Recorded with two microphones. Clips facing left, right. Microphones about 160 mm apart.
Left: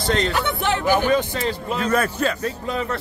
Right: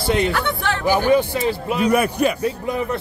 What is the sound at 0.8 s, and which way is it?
A man's voice, 15° right (ahead or behind).